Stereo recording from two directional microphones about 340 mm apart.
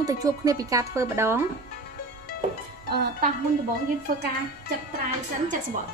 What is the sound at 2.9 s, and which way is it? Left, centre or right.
Speech, right.